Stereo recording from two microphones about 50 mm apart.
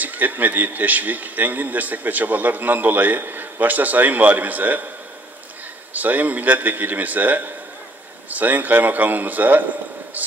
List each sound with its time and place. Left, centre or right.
0.0 s a man's voice: right
5.9 s a man's voice: right